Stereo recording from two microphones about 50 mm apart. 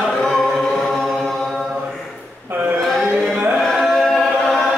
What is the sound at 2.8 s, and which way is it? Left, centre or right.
Chant, centre.